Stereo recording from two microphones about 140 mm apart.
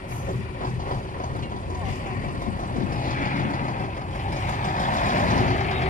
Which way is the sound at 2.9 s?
75° left (ahead or behind).